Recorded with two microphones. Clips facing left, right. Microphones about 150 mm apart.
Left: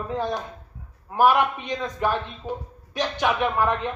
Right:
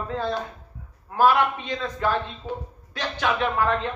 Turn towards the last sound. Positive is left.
turn(degrees=15)  # may be behind; listen again after turning